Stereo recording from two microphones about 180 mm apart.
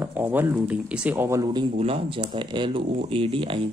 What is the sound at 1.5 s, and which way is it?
Speech, 30° right (ahead or behind).